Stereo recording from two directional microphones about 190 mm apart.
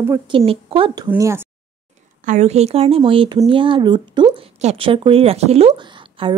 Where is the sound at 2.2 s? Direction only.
35° right (ahead or behind).